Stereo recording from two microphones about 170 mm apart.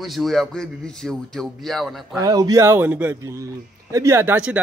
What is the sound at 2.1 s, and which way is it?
A man's voice, 20° right (ahead or behind).